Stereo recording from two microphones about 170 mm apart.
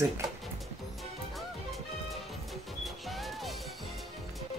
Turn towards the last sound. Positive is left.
turn(degrees=0)  # may be behind; listen again after turning